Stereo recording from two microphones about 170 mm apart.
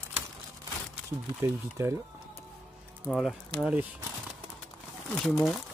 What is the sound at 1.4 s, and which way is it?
Speech, 15° right (ahead or behind).